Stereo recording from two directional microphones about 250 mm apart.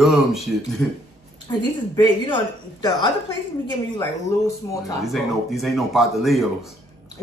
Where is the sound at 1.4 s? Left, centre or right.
Centre.